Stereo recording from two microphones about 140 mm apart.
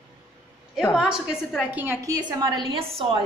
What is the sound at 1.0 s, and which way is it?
Speech, 5° right (ahead or behind).